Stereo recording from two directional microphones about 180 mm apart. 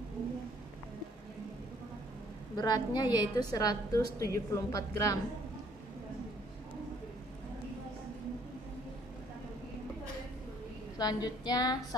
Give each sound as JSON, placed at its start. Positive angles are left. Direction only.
{"t": 2.5, "sound": "a woman's voice", "side_deg": 20}
{"t": 11.0, "sound": "a woman's voice", "side_deg": 20}